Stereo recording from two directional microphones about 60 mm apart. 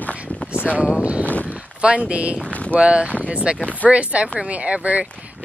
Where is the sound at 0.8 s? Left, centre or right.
Centre.